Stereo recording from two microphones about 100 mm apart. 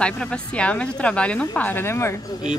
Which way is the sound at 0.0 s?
10° left (ahead or behind).